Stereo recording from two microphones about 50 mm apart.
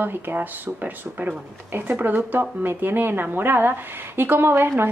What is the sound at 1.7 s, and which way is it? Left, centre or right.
A woman's voice, right.